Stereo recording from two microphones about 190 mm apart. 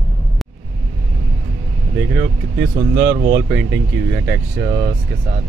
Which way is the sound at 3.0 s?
60° right (ahead or behind).